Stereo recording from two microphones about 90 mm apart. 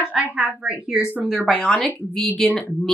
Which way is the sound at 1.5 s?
10° left (ahead or behind).